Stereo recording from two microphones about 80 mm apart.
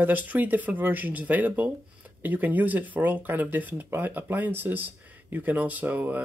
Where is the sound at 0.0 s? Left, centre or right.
Right.